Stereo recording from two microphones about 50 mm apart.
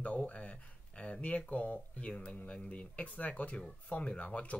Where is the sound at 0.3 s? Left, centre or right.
Left.